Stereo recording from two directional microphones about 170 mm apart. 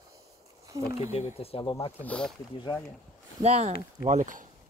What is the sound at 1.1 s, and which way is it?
Speech, 40° left (ahead or behind).